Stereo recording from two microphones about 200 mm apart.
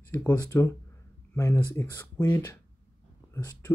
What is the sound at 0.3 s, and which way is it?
Speech, 20° left (ahead or behind).